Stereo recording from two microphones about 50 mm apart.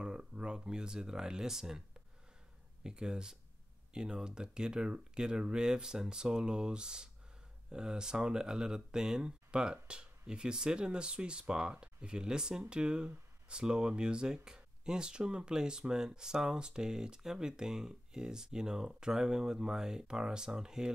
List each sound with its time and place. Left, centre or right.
0.0 s speech: centre
2.8 s speech: centre